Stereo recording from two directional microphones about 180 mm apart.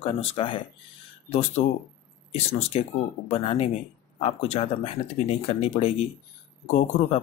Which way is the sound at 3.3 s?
30° left (ahead or behind).